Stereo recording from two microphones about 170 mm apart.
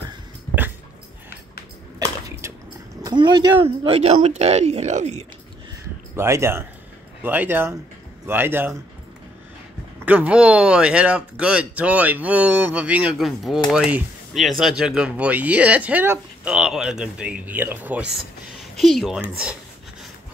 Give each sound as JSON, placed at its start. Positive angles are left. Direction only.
{"t": 2.0, "sound": "a sound", "side_deg": -20}
{"t": 3.0, "sound": "speech", "side_deg": -25}
{"t": 6.1, "sound": "speech", "side_deg": -15}
{"t": 10.0, "sound": "speech", "side_deg": -10}